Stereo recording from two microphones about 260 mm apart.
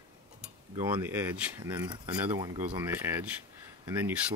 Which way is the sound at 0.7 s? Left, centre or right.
Centre.